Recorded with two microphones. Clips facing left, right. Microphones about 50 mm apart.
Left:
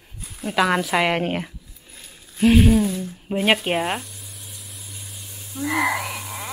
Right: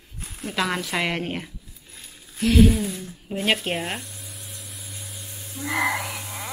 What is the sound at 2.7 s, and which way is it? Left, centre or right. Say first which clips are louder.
Speech: left 7 dB; centre.